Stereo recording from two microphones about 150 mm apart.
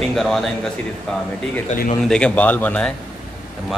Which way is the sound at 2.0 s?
5° left (ahead or behind).